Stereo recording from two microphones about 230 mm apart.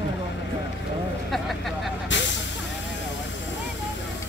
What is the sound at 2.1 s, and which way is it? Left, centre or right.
Vehicle, left.